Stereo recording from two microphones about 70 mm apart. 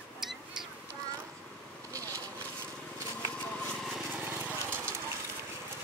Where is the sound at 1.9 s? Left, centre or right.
Right.